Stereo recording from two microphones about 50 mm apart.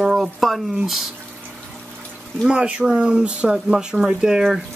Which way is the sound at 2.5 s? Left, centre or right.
Right.